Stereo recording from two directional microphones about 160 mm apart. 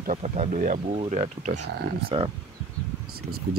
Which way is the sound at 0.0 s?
50° right (ahead or behind).